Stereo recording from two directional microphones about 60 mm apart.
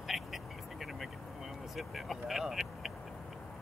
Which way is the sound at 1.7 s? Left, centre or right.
Centre.